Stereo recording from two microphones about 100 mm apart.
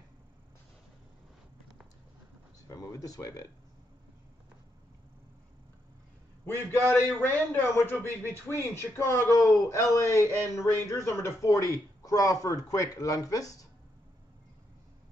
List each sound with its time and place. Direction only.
2.7 s speech: 35° left (ahead or behind)
6.9 s a man's voice: 20° left (ahead or behind); by 13.7 s 35° left (ahead or behind)